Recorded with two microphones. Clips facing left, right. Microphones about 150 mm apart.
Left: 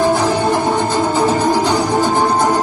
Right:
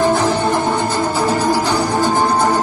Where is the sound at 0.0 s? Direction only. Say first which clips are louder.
Left 1 dB; 15° left (ahead or behind).